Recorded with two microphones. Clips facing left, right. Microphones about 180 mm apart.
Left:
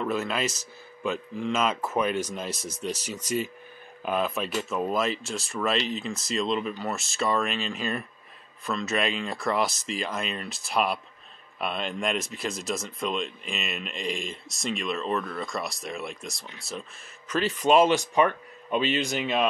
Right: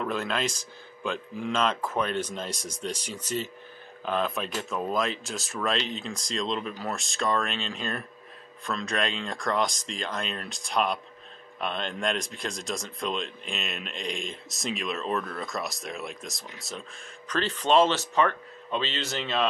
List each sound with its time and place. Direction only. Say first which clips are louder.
0.0 s speech: left 1 dB; 5° left (ahead or behind)